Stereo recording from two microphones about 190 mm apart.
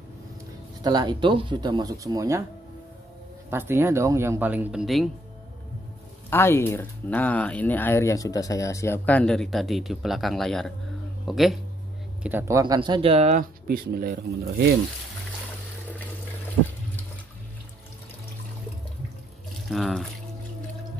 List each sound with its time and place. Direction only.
0.8 s speech: 20° right (ahead or behind)
3.4 s speech: 10° right (ahead or behind)
6.3 s speech: 10° left (ahead or behind); by 13.5 s 35° right (ahead or behind)
13.7 s speech: 50° right (ahead or behind)
19.7 s speech: centre (ahead or behind)